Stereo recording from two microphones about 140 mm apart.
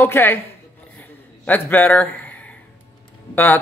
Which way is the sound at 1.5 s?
15° left (ahead or behind).